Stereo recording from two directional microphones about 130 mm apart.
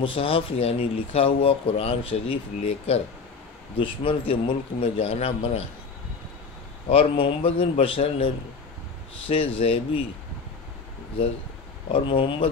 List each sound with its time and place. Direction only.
0.0 s speech: 45° left (ahead or behind)
6.9 s speech: 45° left (ahead or behind)
9.3 s speech: 45° left (ahead or behind)
11.9 s speech: 40° left (ahead or behind)